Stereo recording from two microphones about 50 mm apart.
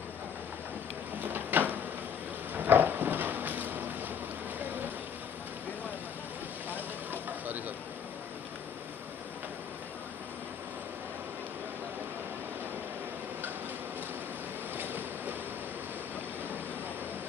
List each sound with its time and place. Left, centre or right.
1.2 s a sound: right
6.7 s vehicle: right
14.8 s waves: right